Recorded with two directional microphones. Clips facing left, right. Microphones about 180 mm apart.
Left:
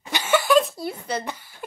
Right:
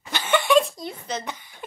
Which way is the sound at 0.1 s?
5° left (ahead or behind).